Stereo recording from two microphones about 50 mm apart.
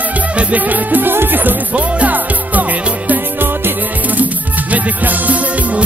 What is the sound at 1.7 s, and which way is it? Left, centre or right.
Music, right.